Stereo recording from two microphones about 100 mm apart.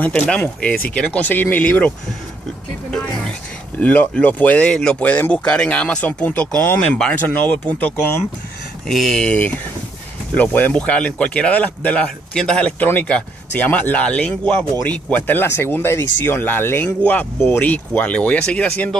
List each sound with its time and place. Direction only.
0.0 s speech: 15° left (ahead or behind)
3.8 s speech: 15° left (ahead or behind)
8.8 s speech: 5° left (ahead or behind)